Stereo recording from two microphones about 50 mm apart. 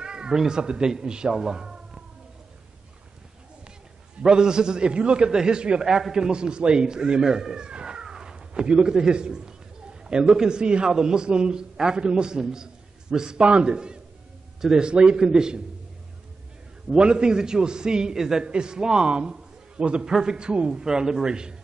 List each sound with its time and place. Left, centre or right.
0.0 s a man's voice: centre
4.2 s a man's voice: centre
16.9 s a man's voice: centre